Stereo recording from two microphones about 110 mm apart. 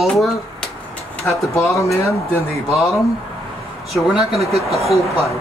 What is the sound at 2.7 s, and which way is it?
Speech, centre (ahead or behind).